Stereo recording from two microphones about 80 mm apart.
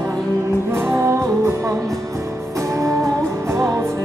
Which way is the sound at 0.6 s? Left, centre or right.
Right.